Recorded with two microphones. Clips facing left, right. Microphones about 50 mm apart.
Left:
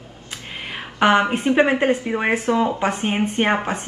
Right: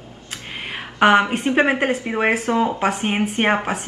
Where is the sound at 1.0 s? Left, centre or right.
Centre.